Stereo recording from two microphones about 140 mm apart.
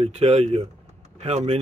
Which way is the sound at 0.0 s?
45° right (ahead or behind).